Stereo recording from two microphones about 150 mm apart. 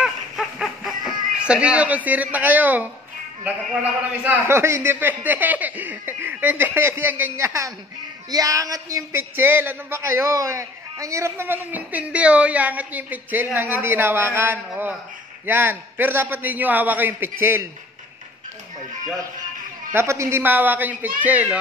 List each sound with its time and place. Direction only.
0.0 s a sound: centre (ahead or behind)
4.2 s a man's voice: 15° right (ahead or behind)
19.9 s a man's voice: 15° right (ahead or behind)